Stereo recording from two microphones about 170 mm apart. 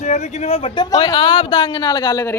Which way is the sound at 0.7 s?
25° left (ahead or behind).